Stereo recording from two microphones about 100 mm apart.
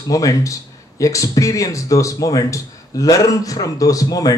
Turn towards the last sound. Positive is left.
turn(degrees=35)  # may be behind; listen again after turning